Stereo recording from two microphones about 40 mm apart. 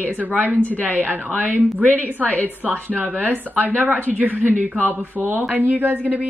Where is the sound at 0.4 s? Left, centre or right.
Right.